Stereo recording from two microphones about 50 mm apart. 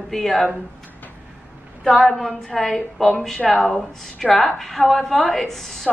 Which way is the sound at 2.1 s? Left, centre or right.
Centre.